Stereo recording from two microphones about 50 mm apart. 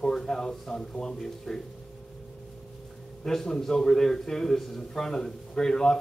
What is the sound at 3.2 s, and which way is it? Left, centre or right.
A man's voice, centre.